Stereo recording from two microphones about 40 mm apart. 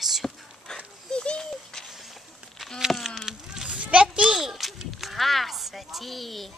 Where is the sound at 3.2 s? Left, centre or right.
Centre.